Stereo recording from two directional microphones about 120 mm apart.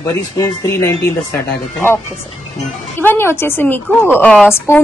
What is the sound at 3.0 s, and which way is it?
Speech, 20° left (ahead or behind).